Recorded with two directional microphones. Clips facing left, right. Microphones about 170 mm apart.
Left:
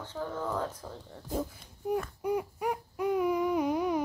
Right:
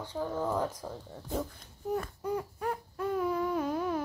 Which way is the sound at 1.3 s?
10° left (ahead or behind).